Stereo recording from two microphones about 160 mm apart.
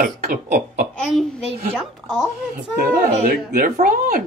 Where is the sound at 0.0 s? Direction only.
60° right (ahead or behind).